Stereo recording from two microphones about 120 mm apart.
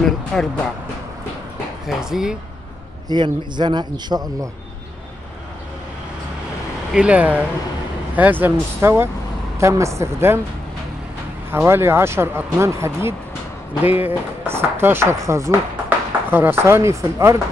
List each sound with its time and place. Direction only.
0.0 s a sound: 5° left (ahead or behind)
1.9 s speech: 5° right (ahead or behind)
3.1 s a man's voice: 40° right (ahead or behind)
6.9 s speech: 10° right (ahead or behind)
11.5 s speech: 20° right (ahead or behind)